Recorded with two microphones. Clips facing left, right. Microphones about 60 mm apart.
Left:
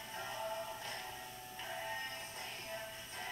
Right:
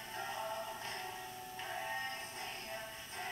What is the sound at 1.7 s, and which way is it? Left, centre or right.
Music, centre.